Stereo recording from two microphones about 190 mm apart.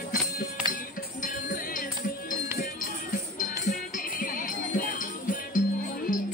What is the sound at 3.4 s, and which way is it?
Music, 45° left (ahead or behind).